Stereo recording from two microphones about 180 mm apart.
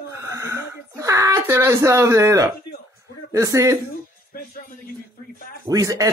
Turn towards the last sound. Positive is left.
turn(degrees=-20)  # may be behind; listen again after turning